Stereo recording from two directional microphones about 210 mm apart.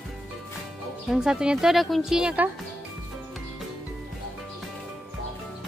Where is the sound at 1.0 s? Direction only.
5° right (ahead or behind).